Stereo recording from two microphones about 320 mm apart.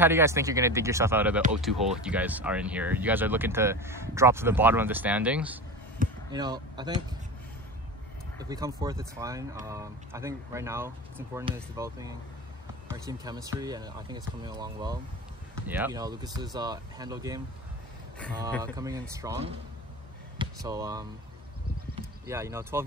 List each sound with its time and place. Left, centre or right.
0.0 s speech: centre
6.0 s a sound: right
6.3 s speech: centre
8.5 s speech: centre
18.6 s speech: centre